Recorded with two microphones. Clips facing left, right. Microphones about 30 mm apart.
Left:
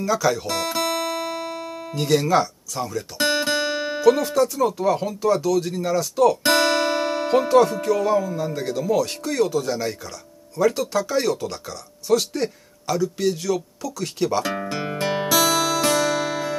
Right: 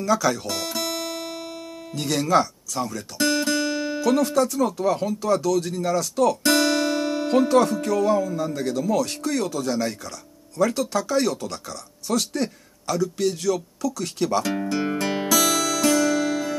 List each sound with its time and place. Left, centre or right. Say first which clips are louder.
0.0 s speech: left 1 dB; centre
1.3 s music: left 5 dB; left
2.0 s speech: left 2 dB; centre
3.2 s music: left 1 dB; left
4.0 s speech: left 3 dB; centre
6.4 s music: left 1 dB; left
7.2 s speech: left 2 dB; centre
14.4 s music: right 2 dB; centre